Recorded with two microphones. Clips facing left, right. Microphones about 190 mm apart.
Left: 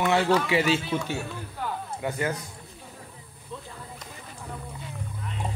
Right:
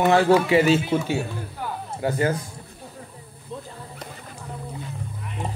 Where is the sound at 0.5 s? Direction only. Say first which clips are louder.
Right 6 dB; 45° right (ahead or behind).